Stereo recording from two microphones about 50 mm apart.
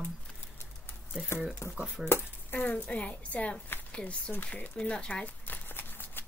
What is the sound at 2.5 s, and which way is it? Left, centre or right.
A woman's voice, left.